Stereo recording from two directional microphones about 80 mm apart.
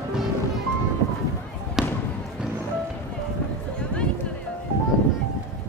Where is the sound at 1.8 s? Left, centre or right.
Centre.